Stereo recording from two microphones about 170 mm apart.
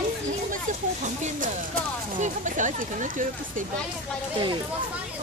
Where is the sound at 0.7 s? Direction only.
50° right (ahead or behind).